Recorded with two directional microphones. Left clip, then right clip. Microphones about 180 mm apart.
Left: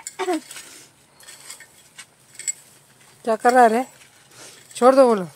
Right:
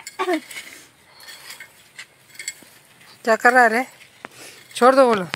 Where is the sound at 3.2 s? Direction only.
5° left (ahead or behind).